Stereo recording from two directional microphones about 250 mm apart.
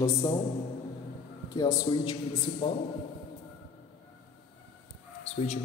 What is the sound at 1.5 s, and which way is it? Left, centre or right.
Speech, centre.